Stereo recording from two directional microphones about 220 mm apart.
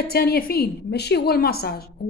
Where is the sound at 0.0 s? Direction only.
45° left (ahead or behind).